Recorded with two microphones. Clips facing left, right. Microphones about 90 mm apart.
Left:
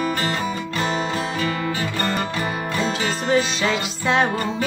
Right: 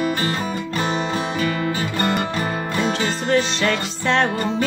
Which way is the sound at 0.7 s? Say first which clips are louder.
Right 2 dB; 25° right (ahead or behind).